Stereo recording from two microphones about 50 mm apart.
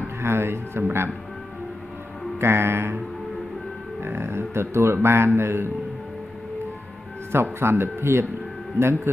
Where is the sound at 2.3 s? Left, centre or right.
Right.